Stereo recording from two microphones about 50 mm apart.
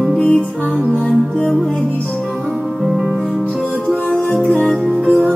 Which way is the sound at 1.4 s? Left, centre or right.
Centre.